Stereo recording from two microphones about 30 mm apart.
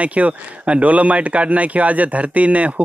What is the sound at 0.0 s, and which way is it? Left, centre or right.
Speech, right.